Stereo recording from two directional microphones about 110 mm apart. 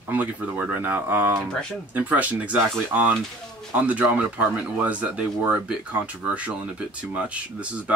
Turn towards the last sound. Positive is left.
turn(degrees=-10)  # may be behind; listen again after turning